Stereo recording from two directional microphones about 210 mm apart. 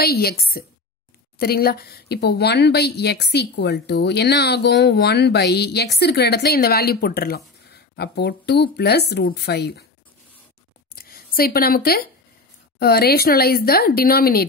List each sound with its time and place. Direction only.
0.0 s speech: 45° left (ahead or behind)
11.0 s a woman's voice: 45° left (ahead or behind)